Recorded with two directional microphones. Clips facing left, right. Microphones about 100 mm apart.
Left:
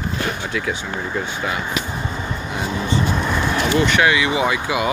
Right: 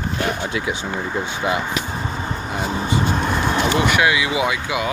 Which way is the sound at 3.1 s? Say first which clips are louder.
Even; 35° right (ahead or behind).